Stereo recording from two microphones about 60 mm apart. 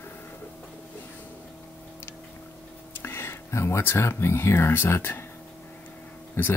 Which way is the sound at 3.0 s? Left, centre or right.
Left.